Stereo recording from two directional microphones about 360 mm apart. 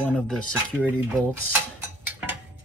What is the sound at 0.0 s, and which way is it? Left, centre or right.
Speech, centre.